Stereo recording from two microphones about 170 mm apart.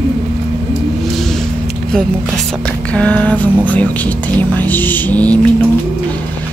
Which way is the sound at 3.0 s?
10° left (ahead or behind).